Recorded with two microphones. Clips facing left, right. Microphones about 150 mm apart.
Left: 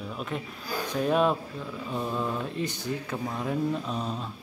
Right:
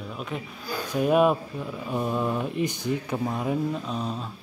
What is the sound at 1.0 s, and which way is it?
Speech, 10° right (ahead or behind).